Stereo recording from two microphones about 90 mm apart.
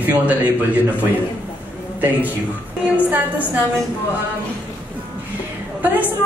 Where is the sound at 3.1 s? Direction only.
20° right (ahead or behind).